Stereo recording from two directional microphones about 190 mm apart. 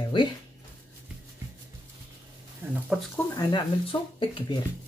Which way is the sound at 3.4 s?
20° left (ahead or behind).